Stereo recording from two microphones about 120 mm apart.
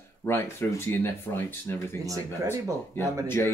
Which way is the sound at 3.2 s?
20° left (ahead or behind).